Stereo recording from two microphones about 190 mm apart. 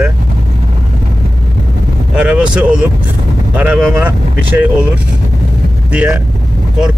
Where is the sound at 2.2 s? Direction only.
5° right (ahead or behind).